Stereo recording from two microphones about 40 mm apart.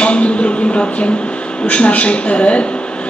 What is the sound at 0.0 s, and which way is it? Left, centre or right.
A man's voice, left.